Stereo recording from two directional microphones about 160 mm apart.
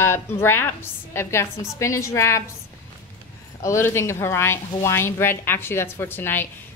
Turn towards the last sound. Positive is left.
turn(degrees=15)  # may be behind; listen again after turning